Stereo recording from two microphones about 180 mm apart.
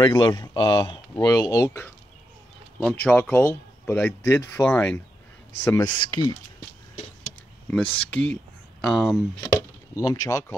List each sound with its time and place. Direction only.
0.0 s speech: 25° left (ahead or behind)
7.7 s speech: 5° left (ahead or behind)
9.4 s speech: 15° left (ahead or behind)